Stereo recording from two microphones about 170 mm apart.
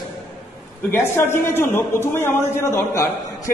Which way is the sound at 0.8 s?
15° left (ahead or behind).